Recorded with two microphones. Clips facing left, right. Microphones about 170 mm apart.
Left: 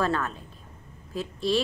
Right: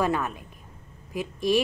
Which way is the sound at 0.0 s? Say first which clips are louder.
Right 1 dB; 15° right (ahead or behind).